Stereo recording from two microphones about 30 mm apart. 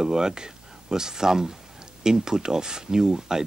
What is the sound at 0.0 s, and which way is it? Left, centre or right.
Speech, right.